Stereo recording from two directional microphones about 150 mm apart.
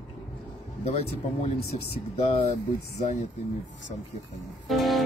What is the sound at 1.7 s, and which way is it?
Speech, 40° left (ahead or behind).